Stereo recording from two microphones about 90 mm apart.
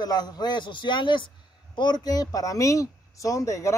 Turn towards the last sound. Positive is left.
turn(degrees=35)  # may be behind; listen again after turning